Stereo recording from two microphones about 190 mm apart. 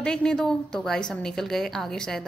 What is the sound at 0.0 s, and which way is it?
A woman's voice, 5° left (ahead or behind).